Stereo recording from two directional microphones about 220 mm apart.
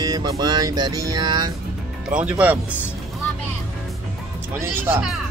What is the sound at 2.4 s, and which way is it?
Music, 5° right (ahead or behind).